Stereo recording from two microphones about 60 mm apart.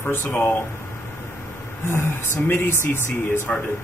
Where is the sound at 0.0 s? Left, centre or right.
Left.